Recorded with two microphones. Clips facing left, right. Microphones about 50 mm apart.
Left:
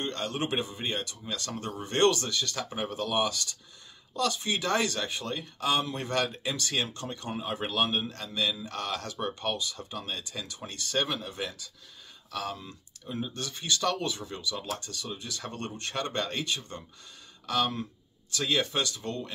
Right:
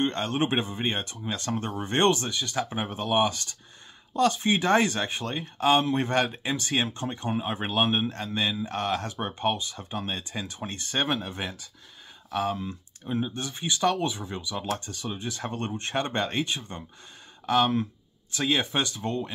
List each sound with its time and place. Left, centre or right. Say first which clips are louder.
0.0 s speech: right 6 dB; right